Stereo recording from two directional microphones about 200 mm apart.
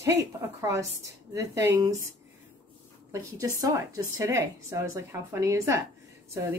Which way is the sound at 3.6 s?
15° right (ahead or behind).